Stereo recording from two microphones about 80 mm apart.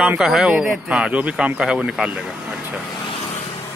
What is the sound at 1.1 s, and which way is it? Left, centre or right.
Speech, centre.